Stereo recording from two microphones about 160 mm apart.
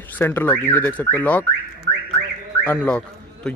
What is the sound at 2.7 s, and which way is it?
Speech, 5° left (ahead or behind).